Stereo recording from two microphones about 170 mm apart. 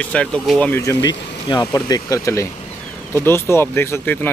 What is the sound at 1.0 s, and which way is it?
Speech, 25° left (ahead or behind).